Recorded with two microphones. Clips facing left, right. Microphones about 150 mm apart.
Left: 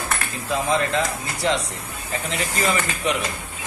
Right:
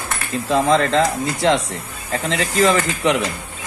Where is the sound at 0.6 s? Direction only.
90° right.